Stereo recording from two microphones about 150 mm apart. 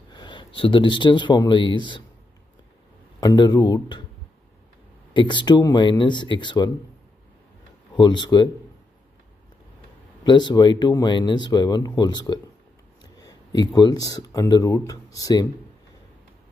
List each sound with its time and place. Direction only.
0.1 s speech: 30° left (ahead or behind)
3.2 s speech: 25° left (ahead or behind)
5.1 s speech: 30° left (ahead or behind)
7.9 s speech: 30° left (ahead or behind)
10.2 s speech: 30° left (ahead or behind)
13.0 s a sound: 25° left (ahead or behind)
13.7 s speech: 25° left (ahead or behind)